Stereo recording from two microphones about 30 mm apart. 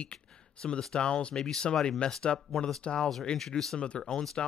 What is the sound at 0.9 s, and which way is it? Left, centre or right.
Speech, left.